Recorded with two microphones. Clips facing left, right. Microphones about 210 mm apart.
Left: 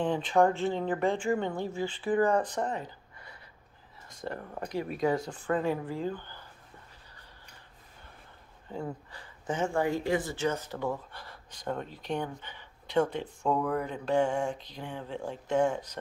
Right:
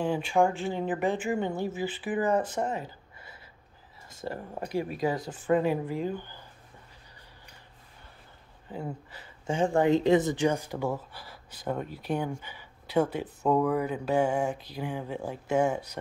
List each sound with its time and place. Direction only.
0.0 s speech: 10° right (ahead or behind)
4.2 s speech: 20° right (ahead or behind)
4.6 s speech: 5° right (ahead or behind)
5.0 s speech: 20° right (ahead or behind)
8.7 s speech: 25° right (ahead or behind); by 16.0 s 10° right (ahead or behind)